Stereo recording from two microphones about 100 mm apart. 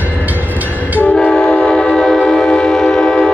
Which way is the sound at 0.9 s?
10° left (ahead or behind).